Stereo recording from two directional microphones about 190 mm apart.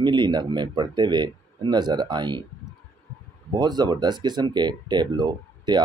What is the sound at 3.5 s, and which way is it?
Speech, 20° right (ahead or behind).